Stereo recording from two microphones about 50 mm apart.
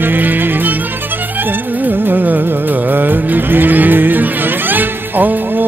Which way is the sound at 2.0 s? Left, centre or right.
Right.